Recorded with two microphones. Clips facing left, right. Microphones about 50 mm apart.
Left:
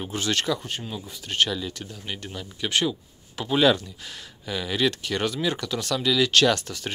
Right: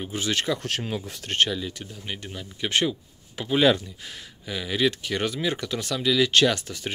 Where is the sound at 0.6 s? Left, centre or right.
Right.